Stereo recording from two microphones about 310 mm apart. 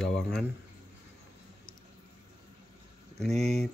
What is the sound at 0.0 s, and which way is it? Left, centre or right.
Speech, centre.